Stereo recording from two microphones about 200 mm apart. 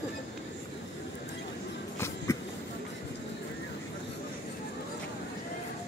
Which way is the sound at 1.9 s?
15° left (ahead or behind).